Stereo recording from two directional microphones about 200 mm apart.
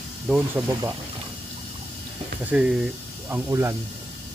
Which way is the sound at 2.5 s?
5° right (ahead or behind).